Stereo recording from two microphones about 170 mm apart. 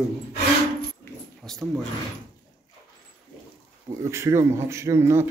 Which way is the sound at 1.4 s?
5° left (ahead or behind).